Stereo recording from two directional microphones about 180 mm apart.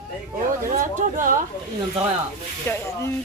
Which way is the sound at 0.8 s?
50° right (ahead or behind).